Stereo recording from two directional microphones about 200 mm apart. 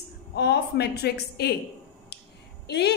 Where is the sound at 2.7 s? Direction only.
55° left (ahead or behind).